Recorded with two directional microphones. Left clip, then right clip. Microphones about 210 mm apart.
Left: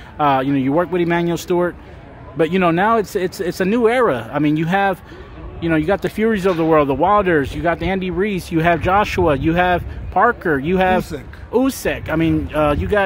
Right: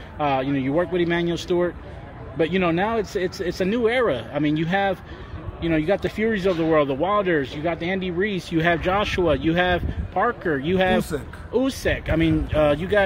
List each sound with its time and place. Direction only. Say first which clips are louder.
0.2 s speech: left 6 dB; 40° left (ahead or behind)